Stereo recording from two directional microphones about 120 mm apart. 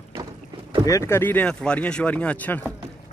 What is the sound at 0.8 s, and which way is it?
Speech, 25° left (ahead or behind).